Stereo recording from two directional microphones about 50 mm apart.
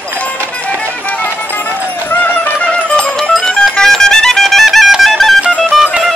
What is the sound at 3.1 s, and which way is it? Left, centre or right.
Music, centre.